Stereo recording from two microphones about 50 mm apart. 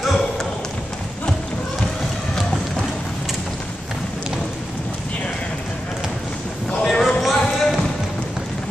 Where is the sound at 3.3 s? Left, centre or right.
Centre.